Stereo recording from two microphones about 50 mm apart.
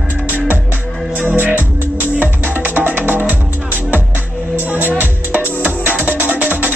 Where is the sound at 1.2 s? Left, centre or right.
Right.